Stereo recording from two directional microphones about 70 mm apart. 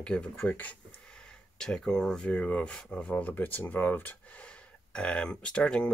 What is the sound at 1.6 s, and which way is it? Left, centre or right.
Speech, centre.